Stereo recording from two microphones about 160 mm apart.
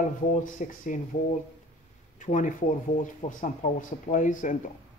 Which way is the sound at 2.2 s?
50° left (ahead or behind).